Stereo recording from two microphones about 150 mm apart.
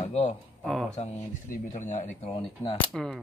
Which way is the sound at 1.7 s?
55° left (ahead or behind).